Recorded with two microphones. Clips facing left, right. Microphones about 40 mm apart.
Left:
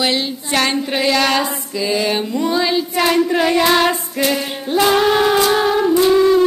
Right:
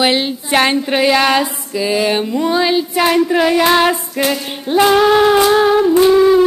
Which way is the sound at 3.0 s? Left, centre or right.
Centre.